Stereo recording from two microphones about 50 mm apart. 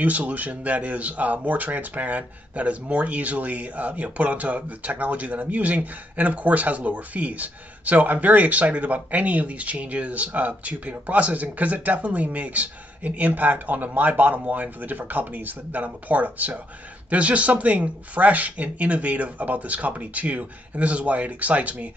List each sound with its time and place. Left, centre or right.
0.0 s speech: right